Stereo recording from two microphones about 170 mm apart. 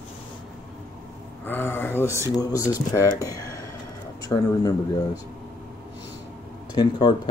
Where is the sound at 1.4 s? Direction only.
10° left (ahead or behind).